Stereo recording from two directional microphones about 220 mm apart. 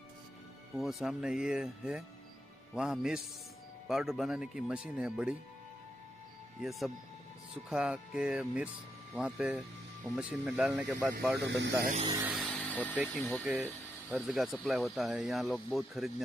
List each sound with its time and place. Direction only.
0.7 s speech: centre (ahead or behind)
6.6 s speech: centre (ahead or behind)
11.3 s speech: 50° right (ahead or behind)
11.8 s speech: 35° right (ahead or behind)
12.1 s speech: 10° right (ahead or behind)
12.4 s a sound: centre (ahead or behind)
13.1 s speech: 5° left (ahead or behind)